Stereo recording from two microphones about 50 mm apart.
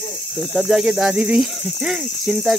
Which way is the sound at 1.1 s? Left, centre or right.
Right.